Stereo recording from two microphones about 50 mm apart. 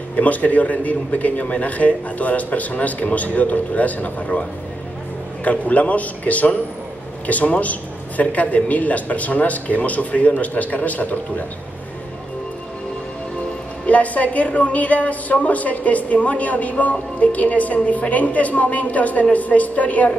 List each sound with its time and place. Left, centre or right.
0.1 s a woman's voice: left
13.8 s a woman's voice: left